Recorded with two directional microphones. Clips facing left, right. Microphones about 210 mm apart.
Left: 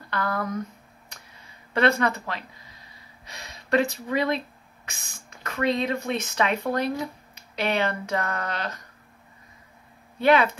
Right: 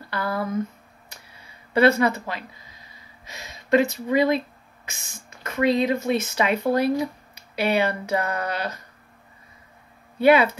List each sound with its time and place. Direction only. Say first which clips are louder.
0.1 s speech: right 1 dB; 10° right (ahead or behind)
1.7 s speech: right 4 dB; 10° right (ahead or behind)
5.4 s speech: right 4 dB; 5° right (ahead or behind)
10.1 s speech: right 3 dB; 10° right (ahead or behind)